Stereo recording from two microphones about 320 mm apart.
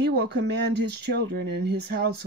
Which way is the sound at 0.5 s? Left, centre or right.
Right.